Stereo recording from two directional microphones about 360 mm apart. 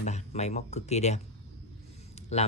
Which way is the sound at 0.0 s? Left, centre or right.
Centre.